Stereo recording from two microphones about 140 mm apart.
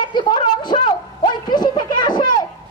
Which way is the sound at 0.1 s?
35° left (ahead or behind).